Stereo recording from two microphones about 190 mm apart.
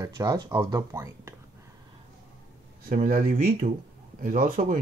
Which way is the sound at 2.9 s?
45° right (ahead or behind).